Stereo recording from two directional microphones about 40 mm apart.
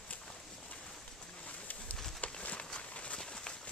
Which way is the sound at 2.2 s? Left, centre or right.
Left.